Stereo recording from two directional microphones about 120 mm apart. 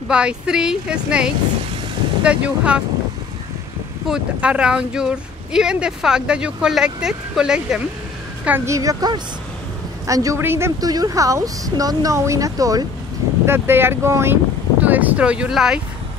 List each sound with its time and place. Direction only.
0.1 s speech: 10° right (ahead or behind)
4.1 s speech: 10° right (ahead or behind)
8.5 s speech: 20° right (ahead or behind)
10.8 s speech: 30° right (ahead or behind)
13.5 s speech: 20° right (ahead or behind)